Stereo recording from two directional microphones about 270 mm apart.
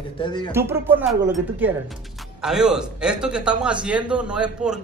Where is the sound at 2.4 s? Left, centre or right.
Centre.